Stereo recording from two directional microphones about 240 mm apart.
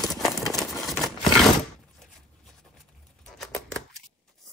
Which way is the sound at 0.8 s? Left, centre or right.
Centre.